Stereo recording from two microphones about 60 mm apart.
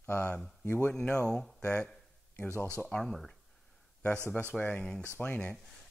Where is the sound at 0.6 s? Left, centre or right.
Left.